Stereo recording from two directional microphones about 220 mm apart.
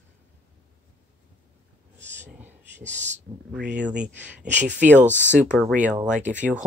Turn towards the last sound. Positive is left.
turn(degrees=-5)  # may be behind; listen again after turning